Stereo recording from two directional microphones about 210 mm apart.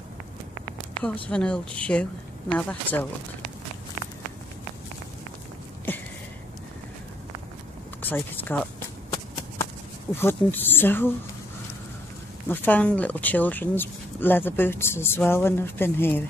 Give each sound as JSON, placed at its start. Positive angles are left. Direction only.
{"t": 1.3, "sound": "speech", "side_deg": 5}
{"t": 5.9, "sound": "a sound", "side_deg": 10}
{"t": 8.0, "sound": "speech", "side_deg": 10}
{"t": 10.1, "sound": "speech", "side_deg": 10}
{"t": 12.4, "sound": "speech", "side_deg": 10}